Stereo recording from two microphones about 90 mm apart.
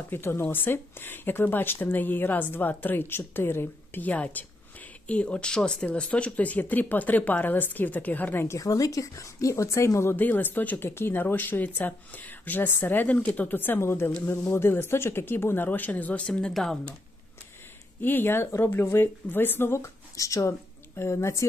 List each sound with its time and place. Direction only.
0.1 s speech: 25° left (ahead or behind)
8.5 s speech: 40° left (ahead or behind); by 16.7 s 10° left (ahead or behind)
18.0 s speech: 25° left (ahead or behind)